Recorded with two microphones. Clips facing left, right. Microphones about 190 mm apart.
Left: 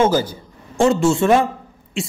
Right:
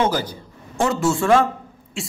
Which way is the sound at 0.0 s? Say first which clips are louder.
Left 5 dB; 25° left (ahead or behind).